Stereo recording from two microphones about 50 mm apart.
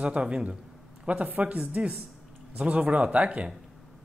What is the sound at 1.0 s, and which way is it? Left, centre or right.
Speech, right.